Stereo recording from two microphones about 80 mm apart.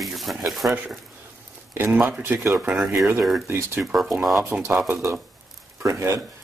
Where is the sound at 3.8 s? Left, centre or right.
Centre.